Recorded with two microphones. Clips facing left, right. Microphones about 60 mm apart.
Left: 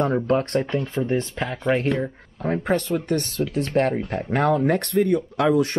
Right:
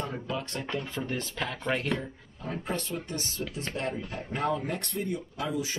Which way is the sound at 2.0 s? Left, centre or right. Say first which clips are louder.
Left 11 dB; left.